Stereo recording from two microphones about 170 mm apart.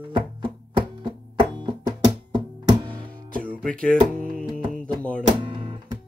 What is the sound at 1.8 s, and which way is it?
Music, 20° right (ahead or behind).